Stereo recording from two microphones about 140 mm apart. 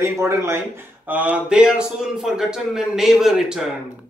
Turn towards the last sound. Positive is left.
turn(degrees=-5)  # may be behind; listen again after turning